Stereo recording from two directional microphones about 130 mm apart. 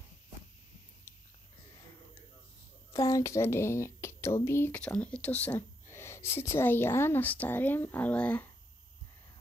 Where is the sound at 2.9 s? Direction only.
25° left (ahead or behind).